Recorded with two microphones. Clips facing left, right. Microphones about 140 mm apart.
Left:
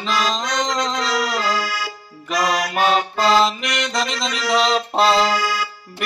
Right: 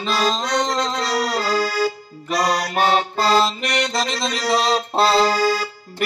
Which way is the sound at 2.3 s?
35° right (ahead or behind).